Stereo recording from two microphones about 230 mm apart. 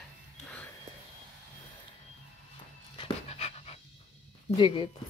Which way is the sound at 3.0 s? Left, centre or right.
Left.